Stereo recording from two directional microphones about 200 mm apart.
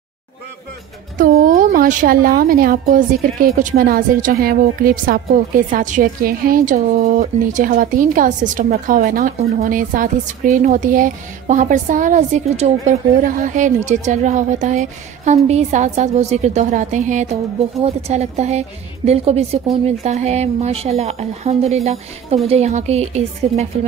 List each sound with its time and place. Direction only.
1.6 s a woman's voice: 45° right (ahead or behind)